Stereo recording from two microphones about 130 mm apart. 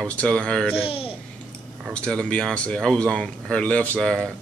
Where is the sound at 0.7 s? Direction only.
45° left (ahead or behind).